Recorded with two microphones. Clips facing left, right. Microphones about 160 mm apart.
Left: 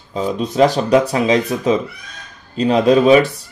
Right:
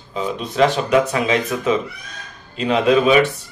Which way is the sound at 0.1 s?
40° left (ahead or behind).